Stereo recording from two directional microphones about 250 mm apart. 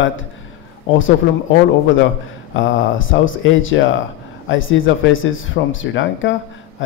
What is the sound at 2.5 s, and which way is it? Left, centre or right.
Speech, left.